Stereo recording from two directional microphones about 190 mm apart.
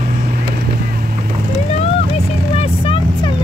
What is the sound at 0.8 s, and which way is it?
Boat, 50° right (ahead or behind).